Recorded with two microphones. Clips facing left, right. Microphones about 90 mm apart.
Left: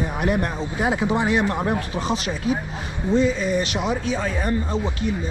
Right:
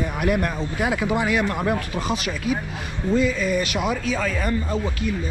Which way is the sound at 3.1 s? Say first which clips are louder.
Left 1 dB; 30° left (ahead or behind).